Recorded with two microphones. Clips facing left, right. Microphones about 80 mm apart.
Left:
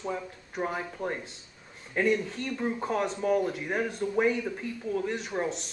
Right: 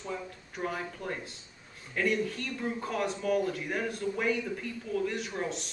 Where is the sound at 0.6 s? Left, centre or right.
Left.